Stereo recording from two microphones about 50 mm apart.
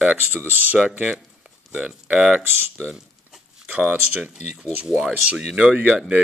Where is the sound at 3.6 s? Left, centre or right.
Right.